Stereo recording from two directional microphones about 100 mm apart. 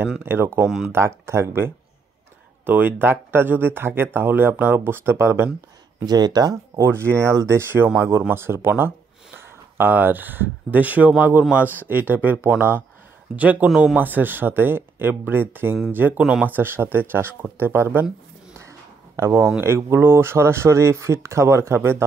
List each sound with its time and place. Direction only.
0.2 s speech: 20° right (ahead or behind)
6.0 s speech: 40° right (ahead or behind)
6.8 s a man's voice: 25° right (ahead or behind)
13.7 s a man's voice: 5° right (ahead or behind)
13.9 s speech: 20° right (ahead or behind)
18.6 s a sound: 25° right (ahead or behind)
19.6 s speech: 25° right (ahead or behind)